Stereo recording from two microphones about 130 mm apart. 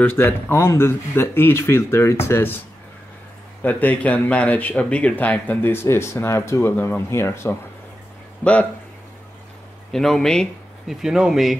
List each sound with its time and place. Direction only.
0.0 s speech: 15° left (ahead or behind)
3.6 s speech: 10° left (ahead or behind)
9.9 s speech: 5° left (ahead or behind)